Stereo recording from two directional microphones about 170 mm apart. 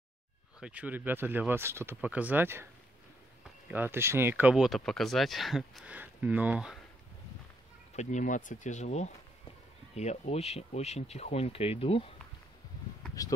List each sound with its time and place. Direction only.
0.6 s speech: 5° right (ahead or behind)
7.9 s speech: 45° left (ahead or behind)